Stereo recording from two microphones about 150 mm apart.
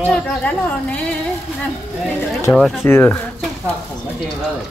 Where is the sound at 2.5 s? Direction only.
10° left (ahead or behind).